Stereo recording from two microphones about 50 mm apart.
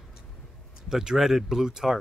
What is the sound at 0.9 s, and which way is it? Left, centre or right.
Speech, centre.